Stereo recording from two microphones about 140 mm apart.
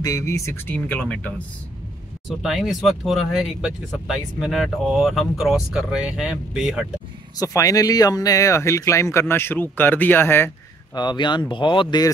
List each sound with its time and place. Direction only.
0.0 s speech: 25° left (ahead or behind)
2.2 s speech: centre (ahead or behind)
7.3 s speech: 25° left (ahead or behind)
11.0 s speech: 35° left (ahead or behind)